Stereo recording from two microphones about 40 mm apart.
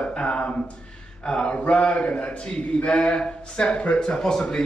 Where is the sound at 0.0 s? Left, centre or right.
Left.